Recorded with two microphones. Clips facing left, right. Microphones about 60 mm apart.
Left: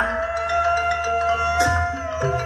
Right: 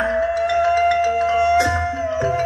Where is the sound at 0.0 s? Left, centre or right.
Left.